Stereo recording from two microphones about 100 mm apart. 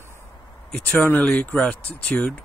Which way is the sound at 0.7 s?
10° left (ahead or behind).